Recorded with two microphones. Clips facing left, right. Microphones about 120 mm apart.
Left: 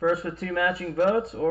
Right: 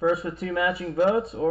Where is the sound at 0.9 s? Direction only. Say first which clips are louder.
Right 1 dB; 10° right (ahead or behind).